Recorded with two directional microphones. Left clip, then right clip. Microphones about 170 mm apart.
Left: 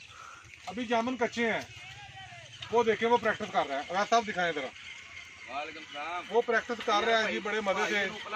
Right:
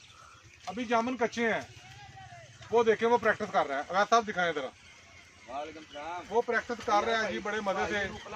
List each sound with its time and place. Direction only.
0.7 s speech: 5° left (ahead or behind)
2.7 s speech: centre (ahead or behind)
3.8 s speech: 15° left (ahead or behind)
5.5 s speech: 40° right (ahead or behind)
6.3 s speech: 55° left (ahead or behind)